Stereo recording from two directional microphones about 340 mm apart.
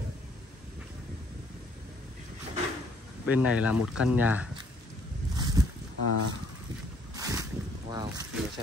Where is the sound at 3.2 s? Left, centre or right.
Centre.